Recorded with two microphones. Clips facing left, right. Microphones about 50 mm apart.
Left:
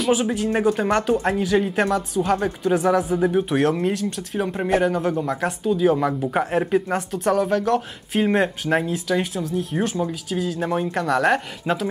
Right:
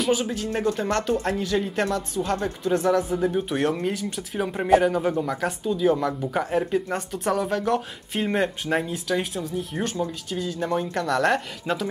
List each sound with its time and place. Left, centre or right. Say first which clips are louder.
0.1 s speech: left 4 dB; centre
5.9 s speech: left 4 dB; centre
6.9 s speech: left 4 dB; centre